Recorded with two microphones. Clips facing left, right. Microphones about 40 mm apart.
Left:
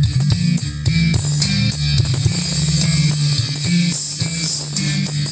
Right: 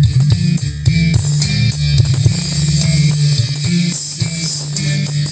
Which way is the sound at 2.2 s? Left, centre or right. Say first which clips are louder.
Right 3 dB; left.